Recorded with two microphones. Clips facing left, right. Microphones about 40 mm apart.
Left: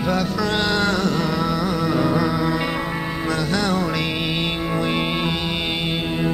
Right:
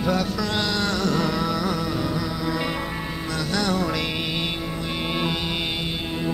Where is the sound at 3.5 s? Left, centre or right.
Left.